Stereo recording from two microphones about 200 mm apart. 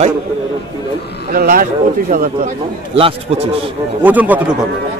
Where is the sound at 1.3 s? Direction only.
45° right (ahead or behind).